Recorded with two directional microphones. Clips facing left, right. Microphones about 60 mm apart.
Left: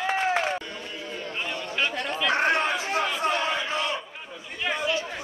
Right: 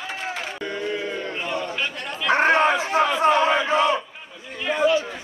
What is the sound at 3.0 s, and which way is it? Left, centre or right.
Battle cry, right.